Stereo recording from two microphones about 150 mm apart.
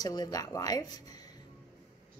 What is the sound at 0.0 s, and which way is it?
Speech, 25° left (ahead or behind).